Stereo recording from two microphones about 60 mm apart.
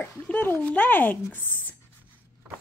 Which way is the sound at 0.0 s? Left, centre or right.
Left.